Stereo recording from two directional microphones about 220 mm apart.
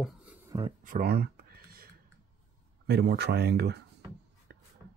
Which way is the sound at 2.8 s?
50° right (ahead or behind).